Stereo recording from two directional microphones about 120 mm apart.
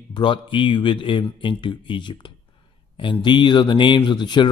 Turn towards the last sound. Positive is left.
turn(degrees=40)  # may be behind; listen again after turning